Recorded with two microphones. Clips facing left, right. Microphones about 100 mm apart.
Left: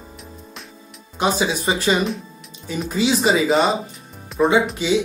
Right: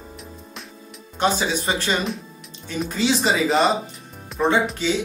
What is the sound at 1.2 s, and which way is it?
Speech, 5° left (ahead or behind).